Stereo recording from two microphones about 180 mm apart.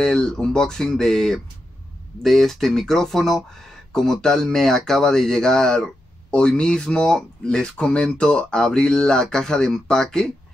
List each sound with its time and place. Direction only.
0.0 s speech: 5° left (ahead or behind)